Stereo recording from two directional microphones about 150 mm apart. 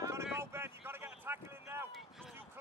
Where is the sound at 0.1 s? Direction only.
15° right (ahead or behind).